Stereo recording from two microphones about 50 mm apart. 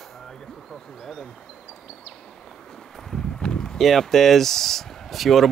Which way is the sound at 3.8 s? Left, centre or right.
Centre.